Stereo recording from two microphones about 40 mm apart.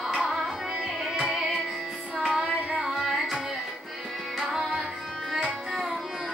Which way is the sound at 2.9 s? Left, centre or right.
Centre.